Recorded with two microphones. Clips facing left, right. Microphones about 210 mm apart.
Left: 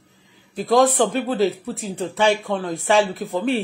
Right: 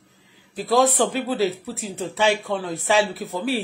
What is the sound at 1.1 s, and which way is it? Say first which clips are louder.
Speech: left 2 dB; 50° left (ahead or behind).